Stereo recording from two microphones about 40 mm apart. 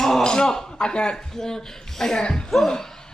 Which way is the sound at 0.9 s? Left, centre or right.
Left.